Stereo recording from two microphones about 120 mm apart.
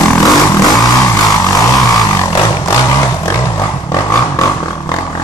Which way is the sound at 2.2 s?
25° left (ahead or behind).